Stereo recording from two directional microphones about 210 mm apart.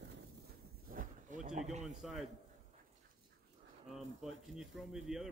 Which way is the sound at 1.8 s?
Centre (ahead or behind).